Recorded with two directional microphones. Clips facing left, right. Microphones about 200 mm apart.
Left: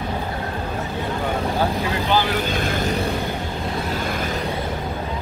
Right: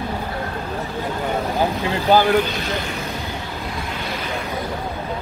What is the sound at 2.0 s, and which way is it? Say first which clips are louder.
Speech: right 7 dB; 50° right (ahead or behind).